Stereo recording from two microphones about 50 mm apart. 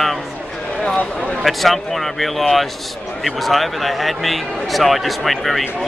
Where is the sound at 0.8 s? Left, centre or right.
Centre.